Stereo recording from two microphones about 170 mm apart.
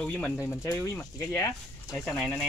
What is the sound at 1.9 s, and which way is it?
Speech, centre (ahead or behind).